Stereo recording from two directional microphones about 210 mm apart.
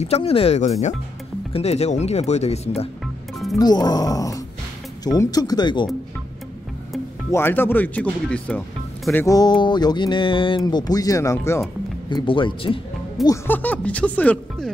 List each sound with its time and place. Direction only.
0.0 s speech: 30° left (ahead or behind)
3.5 s speech: 20° left (ahead or behind)
7.2 s speech: 10° left (ahead or behind)